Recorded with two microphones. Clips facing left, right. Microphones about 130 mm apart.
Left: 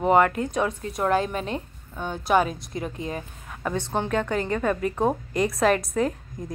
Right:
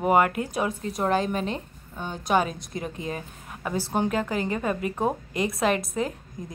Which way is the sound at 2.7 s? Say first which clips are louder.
Left 1 dB; 25° left (ahead or behind).